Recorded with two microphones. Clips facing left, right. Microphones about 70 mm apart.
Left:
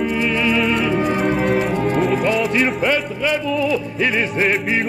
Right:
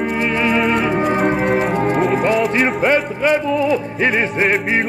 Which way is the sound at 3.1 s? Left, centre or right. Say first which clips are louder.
Right 4 dB; right.